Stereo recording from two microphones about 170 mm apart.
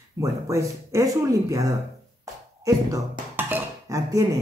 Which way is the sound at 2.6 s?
20° right (ahead or behind).